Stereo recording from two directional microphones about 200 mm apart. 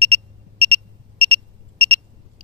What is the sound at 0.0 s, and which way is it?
Alarm clock, 90° right.